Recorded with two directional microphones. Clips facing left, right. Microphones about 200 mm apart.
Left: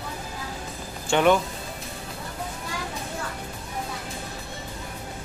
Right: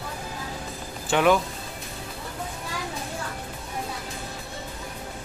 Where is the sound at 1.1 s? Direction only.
Centre (ahead or behind).